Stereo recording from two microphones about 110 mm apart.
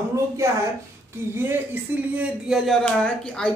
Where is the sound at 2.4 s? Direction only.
5° right (ahead or behind).